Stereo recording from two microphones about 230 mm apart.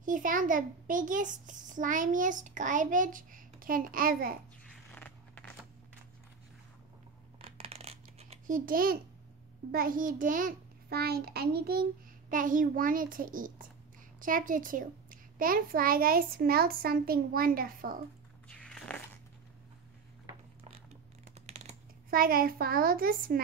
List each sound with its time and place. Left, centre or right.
0.0 s a child's voice: right
4.9 s a sound: centre
7.4 s coin: right
9.7 s a child's voice: right
18.5 s biting: centre
21.5 s a child's voice: right